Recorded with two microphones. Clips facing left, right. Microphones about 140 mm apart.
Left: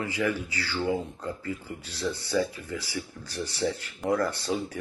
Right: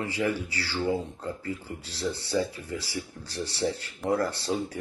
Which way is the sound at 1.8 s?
30° right (ahead or behind).